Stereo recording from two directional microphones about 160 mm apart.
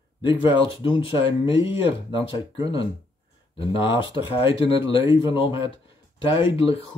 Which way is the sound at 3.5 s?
35° left (ahead or behind).